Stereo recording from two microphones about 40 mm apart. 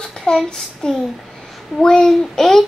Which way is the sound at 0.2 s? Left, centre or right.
Centre.